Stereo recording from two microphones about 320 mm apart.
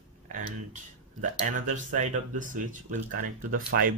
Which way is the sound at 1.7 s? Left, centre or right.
Right.